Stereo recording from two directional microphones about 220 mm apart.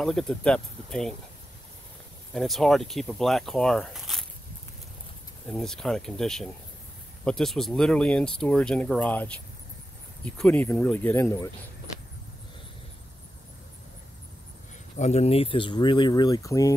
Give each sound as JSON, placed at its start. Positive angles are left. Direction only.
{"t": 0.0, "sound": "speech", "side_deg": 5}
{"t": 2.3, "sound": "speech", "side_deg": 0}
{"t": 5.5, "sound": "speech", "side_deg": 0}
{"t": 15.0, "sound": "speech", "side_deg": 30}